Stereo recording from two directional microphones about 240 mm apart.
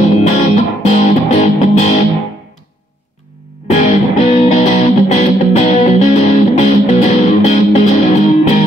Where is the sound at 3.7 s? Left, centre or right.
Left.